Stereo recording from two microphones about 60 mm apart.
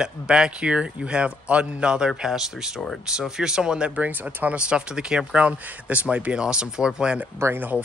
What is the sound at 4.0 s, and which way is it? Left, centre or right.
Speech, right.